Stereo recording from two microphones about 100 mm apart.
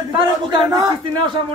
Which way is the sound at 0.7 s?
35° right (ahead or behind).